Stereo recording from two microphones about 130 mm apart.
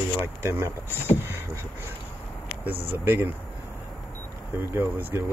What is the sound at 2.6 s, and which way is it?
Speech, 15° right (ahead or behind).